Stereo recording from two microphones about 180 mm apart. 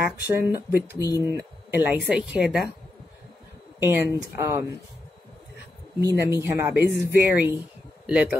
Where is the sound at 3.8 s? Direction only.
15° right (ahead or behind).